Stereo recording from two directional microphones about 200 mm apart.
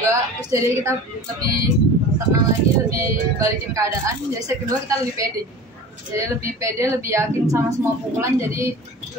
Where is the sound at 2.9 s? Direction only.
15° right (ahead or behind).